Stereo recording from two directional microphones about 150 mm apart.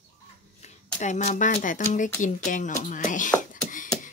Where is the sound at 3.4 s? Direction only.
60° left (ahead or behind).